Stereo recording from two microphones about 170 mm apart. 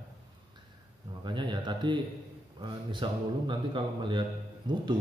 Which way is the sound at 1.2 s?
25° right (ahead or behind).